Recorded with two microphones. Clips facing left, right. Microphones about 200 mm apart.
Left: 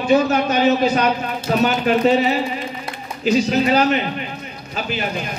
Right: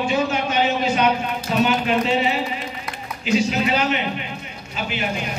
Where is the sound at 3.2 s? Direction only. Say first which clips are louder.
Left 3 dB; 40° left (ahead or behind).